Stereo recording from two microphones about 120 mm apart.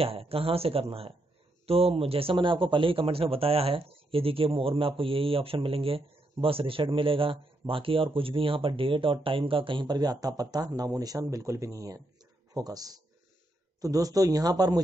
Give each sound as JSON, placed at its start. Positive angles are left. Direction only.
{"t": 0.0, "sound": "a man's voice", "side_deg": -55}